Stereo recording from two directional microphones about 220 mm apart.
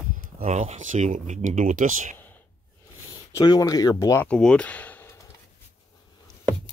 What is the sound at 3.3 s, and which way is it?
Speech, 15° left (ahead or behind).